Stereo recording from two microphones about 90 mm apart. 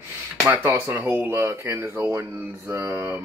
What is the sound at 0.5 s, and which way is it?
Speech, 20° right (ahead or behind).